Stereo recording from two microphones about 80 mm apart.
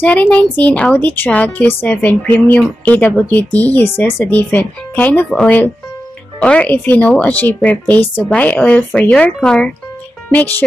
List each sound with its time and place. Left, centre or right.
0.0 s a woman's voice: centre
3.8 s speech: left
4.2 s a woman's voice: left
6.4 s a woman's voice: centre
10.3 s a woman's voice: left